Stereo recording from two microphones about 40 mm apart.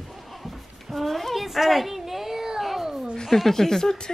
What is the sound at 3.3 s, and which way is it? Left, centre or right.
Speech, centre.